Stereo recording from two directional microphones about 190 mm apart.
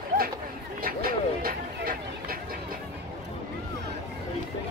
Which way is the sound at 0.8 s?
50° right (ahead or behind).